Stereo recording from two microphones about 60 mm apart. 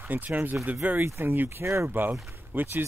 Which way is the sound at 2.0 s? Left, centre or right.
Right.